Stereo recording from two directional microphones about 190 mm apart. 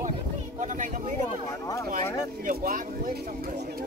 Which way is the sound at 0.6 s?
40° right (ahead or behind).